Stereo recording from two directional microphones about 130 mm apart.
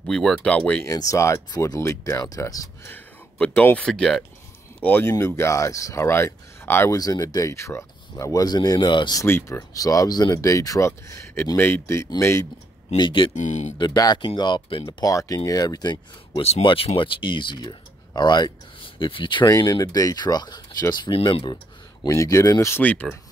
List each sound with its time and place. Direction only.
0.0 s speech: 5° left (ahead or behind)
0.8 s speech: 25° left (ahead or behind)
2.9 s speech: 10° left (ahead or behind)
7.0 s speech: 30° left (ahead or behind)
9.2 s speech: 20° left (ahead or behind)
12.9 s speech: 40° left (ahead or behind)
13.3 s speech: 70° left (ahead or behind)
13.7 s speech: 30° left (ahead or behind)
16.3 s speech: 55° left (ahead or behind)
16.6 s speech: 45° left (ahead or behind)
19.4 s speech: 30° left (ahead or behind)
22.0 s speech: 25° left (ahead or behind)